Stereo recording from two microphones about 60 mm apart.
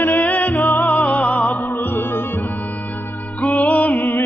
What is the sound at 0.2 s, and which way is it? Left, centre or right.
Music, left.